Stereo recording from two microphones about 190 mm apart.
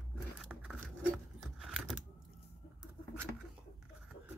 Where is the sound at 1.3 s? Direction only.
Centre (ahead or behind).